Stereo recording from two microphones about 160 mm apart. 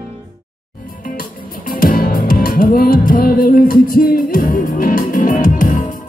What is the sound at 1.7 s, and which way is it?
Music, 60° left (ahead or behind).